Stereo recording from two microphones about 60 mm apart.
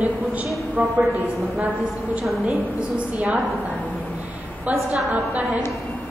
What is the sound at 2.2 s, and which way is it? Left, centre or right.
Speech, centre.